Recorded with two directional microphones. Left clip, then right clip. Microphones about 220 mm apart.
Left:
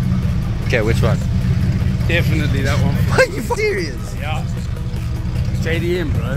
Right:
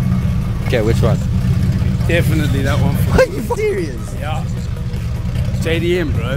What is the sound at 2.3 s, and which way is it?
Speech, 50° right (ahead or behind).